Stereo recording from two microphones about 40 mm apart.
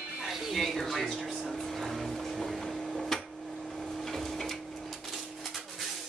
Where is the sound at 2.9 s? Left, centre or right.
Centre.